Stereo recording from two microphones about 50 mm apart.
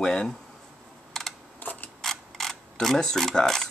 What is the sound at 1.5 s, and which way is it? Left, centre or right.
Camera, left.